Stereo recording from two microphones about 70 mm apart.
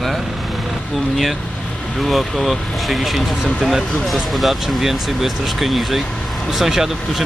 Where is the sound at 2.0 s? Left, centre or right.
Centre.